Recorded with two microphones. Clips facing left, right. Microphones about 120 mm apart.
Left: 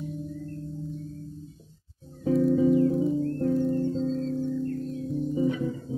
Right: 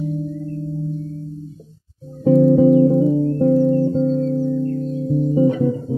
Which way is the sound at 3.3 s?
50° right (ahead or behind).